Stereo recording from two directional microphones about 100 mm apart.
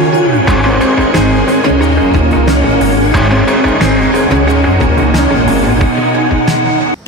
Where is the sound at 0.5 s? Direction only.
Centre (ahead or behind).